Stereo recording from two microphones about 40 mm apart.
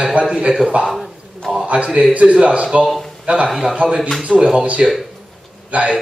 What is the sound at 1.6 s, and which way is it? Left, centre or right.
A man's voice, right.